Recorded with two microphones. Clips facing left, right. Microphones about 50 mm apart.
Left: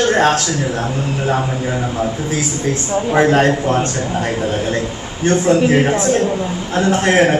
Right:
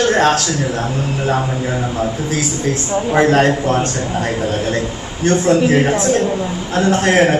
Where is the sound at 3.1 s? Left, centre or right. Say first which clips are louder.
Even; left.